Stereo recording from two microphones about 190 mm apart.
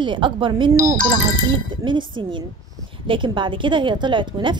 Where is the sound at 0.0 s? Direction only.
25° right (ahead or behind).